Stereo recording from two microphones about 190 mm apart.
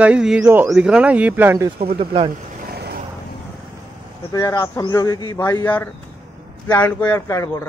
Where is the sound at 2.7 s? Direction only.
55° right (ahead or behind).